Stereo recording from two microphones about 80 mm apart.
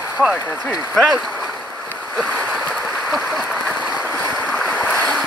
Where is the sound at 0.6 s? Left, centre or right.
Centre.